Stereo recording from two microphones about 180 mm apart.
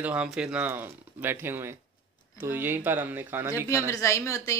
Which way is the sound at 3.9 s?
15° left (ahead or behind).